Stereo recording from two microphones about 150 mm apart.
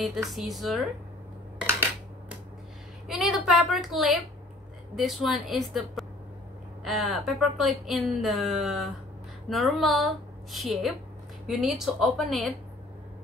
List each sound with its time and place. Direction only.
0.0 s speech: centre (ahead or behind)
3.1 s speech: centre (ahead or behind)